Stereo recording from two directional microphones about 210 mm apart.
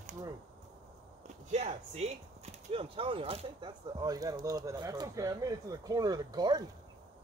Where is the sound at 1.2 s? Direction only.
35° right (ahead or behind).